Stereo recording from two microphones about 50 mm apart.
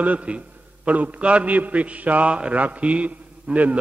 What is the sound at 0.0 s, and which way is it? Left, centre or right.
A man's voice, right.